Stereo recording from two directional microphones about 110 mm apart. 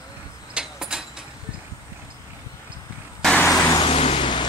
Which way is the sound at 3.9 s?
60° left (ahead or behind).